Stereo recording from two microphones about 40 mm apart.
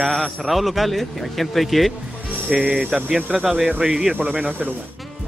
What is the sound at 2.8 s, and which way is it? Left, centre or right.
Speech, right.